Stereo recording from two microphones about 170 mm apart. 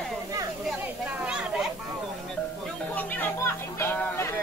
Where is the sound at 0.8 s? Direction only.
10° right (ahead or behind).